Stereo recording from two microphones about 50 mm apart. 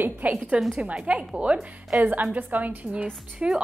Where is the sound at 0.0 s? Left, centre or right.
Right.